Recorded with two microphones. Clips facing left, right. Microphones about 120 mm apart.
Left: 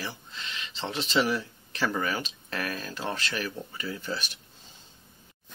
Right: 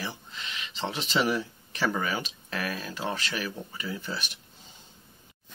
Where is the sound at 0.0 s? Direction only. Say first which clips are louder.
Right 1 dB; 15° right (ahead or behind).